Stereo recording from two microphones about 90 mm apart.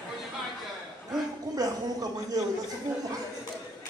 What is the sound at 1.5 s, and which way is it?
Speech, 45° right (ahead or behind).